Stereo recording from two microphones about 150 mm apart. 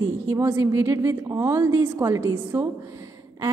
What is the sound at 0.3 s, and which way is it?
A woman's voice, 15° right (ahead or behind).